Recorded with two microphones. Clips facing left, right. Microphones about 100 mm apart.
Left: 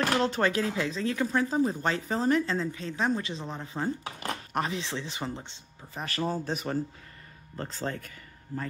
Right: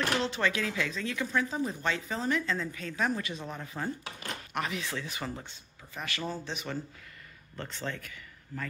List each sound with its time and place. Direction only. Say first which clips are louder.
0.2 s speech: left 4 dB; 40° left (ahead or behind); by 6.0 s 25° left (ahead or behind)
6.0 s speech: left 6 dB; 40° left (ahead or behind)